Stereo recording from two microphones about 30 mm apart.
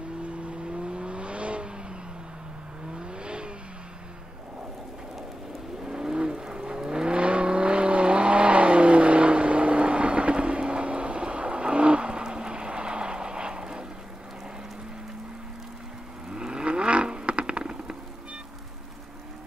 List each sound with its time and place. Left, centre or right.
0.5 s vehicle: right
3.0 s vehicle: right
5.9 s vehicle: right
7.2 s vehicle: right
16.3 s vehicle: right
16.6 s vehicle: right